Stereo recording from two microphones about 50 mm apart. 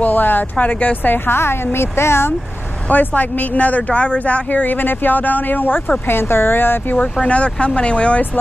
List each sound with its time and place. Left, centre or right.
0.0 s speech: left
2.9 s speech: left
6.0 s speech: left
7.2 s speech: left